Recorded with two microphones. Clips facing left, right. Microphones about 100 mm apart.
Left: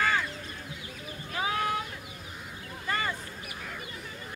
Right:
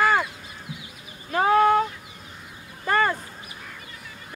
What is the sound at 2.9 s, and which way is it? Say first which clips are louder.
Duck: right 10 dB; 55° right (ahead or behind).